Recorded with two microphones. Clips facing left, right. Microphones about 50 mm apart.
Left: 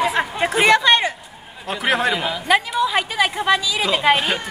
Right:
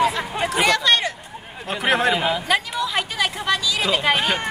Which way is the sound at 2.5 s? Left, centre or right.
Centre.